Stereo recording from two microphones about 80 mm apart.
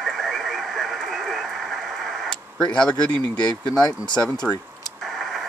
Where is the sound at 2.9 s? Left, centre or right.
Left.